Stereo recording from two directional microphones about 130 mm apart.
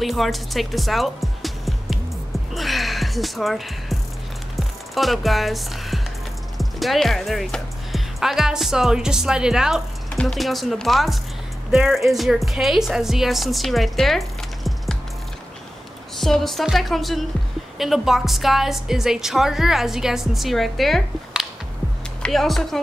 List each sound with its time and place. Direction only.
0.0 s speech: centre (ahead or behind)
2.5 s music: centre (ahead or behind)
4.6 s a woman's voice: centre (ahead or behind)
16.2 s a woman's voice: centre (ahead or behind)